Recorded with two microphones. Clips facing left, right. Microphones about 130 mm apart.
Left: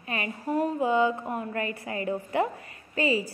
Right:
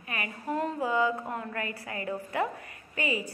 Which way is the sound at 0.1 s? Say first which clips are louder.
Left 4 dB; 25° left (ahead or behind).